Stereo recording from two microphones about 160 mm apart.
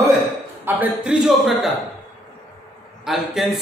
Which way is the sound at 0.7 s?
10° right (ahead or behind).